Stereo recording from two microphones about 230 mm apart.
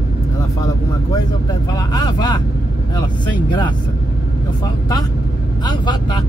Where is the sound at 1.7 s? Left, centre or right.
Centre.